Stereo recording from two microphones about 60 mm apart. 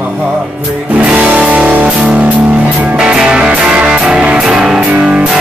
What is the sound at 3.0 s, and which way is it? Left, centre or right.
Music, centre.